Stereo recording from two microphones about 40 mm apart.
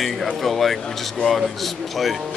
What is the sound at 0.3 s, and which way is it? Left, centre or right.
A man's voice, centre.